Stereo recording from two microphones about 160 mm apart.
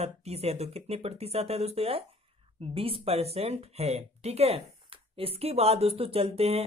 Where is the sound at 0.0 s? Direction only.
40° right (ahead or behind).